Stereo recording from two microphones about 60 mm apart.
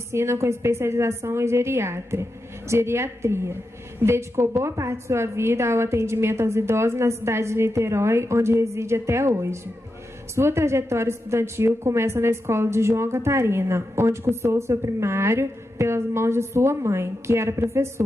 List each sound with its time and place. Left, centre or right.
0.1 s a woman's voice: right